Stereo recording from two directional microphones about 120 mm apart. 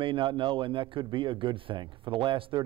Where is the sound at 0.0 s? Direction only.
45° right (ahead or behind).